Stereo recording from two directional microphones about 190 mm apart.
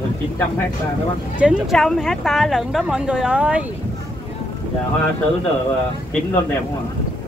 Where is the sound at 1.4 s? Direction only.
Centre (ahead or behind).